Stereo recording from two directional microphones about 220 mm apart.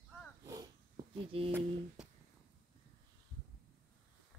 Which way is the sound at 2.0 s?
5° right (ahead or behind).